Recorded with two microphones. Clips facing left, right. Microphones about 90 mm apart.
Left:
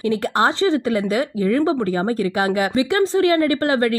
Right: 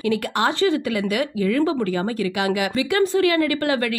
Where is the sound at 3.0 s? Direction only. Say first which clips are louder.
Left 1 dB; 25° left (ahead or behind).